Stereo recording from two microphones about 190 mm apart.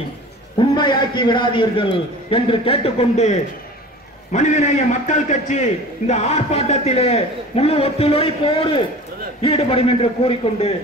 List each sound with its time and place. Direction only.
0.6 s a man's voice: 25° left (ahead or behind)